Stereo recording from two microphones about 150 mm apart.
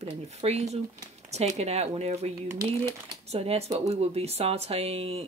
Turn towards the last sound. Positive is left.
turn(degrees=-40)  # may be behind; listen again after turning